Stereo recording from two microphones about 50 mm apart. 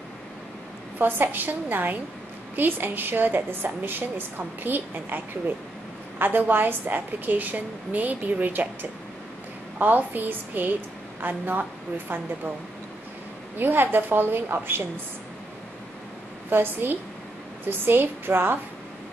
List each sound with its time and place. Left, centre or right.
0.9 s a woman's voice: right
9.8 s a woman's voice: right
13.6 s a woman's voice: right
16.4 s a woman's voice: right